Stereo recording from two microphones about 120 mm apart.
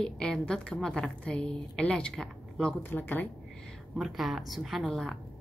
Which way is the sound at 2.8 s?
15° left (ahead or behind).